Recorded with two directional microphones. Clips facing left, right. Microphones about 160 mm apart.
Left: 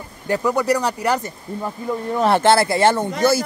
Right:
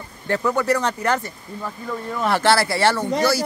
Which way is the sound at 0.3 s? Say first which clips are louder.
Left 2 dB; 10° left (ahead or behind).